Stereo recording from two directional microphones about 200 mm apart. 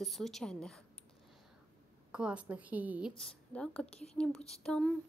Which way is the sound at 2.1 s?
5° right (ahead or behind).